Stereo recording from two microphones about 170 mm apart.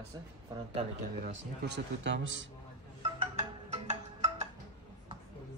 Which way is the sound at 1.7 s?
90° right.